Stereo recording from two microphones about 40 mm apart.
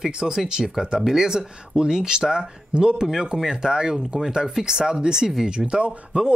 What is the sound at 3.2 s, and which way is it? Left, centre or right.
Speech, centre.